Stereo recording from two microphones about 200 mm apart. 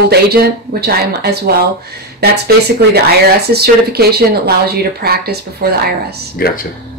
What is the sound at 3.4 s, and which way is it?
A woman's voice, 55° right (ahead or behind).